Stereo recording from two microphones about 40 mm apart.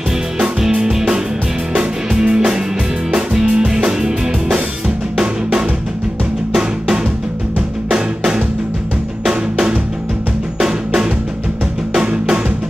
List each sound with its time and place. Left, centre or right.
0.6 s music: centre
8.2 s music: right
9.2 s drum: centre
11.9 s music: right